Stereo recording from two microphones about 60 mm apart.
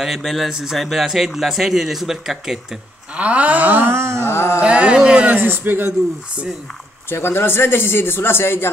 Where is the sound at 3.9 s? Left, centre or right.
Right.